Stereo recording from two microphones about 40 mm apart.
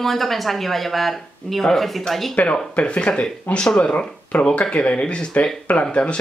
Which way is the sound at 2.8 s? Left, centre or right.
Left.